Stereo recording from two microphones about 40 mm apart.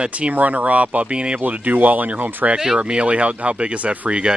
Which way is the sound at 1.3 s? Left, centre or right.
Right.